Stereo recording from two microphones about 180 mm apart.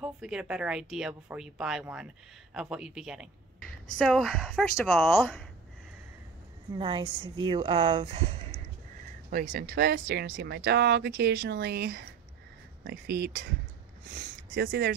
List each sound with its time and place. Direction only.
0.0 s speech: 5° right (ahead or behind)
6.7 s a woman's voice: 25° right (ahead or behind)
9.3 s speech: 50° right (ahead or behind)